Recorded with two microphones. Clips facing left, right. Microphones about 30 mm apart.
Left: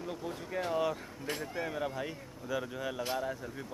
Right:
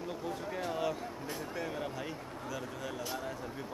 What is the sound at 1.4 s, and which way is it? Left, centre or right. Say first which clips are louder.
Speech: left 2 dB; centre.